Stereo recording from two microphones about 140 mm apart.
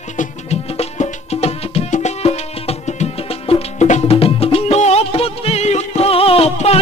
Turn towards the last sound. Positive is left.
turn(degrees=45)  # may be behind; listen again after turning